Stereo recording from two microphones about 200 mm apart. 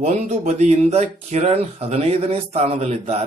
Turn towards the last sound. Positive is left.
turn(degrees=-35)  # may be behind; listen again after turning